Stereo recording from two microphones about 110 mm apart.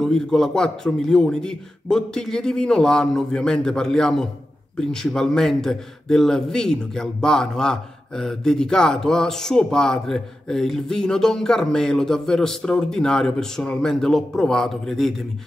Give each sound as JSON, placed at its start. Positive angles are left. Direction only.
{"t": 0.0, "sound": "a man's voice", "side_deg": 5}